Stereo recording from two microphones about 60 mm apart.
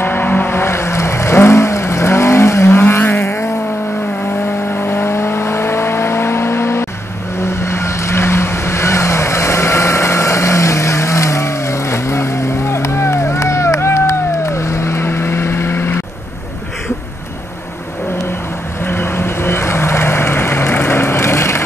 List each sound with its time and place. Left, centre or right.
0.0 s vehicle: left
3.0 s vehicle: left
4.5 s vehicle: left
18.9 s vehicle: left